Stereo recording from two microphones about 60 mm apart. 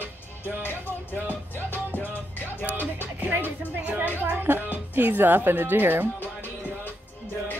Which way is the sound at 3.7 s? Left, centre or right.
Right.